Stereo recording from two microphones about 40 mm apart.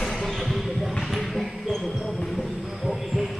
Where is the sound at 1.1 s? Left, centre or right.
Centre.